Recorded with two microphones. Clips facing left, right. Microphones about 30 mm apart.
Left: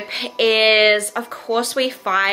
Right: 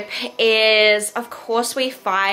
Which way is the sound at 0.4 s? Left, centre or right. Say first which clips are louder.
Even; centre.